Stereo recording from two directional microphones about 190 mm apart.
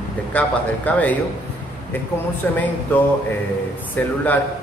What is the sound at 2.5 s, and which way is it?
A man's voice, 10° left (ahead or behind).